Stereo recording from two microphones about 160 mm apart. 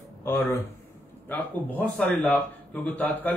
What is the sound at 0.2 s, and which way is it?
Speech, 15° left (ahead or behind).